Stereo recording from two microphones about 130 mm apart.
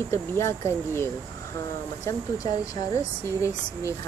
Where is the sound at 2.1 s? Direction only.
25° left (ahead or behind).